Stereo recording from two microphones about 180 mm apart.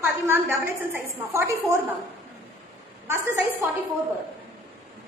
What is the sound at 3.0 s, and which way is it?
Speech, 10° right (ahead or behind).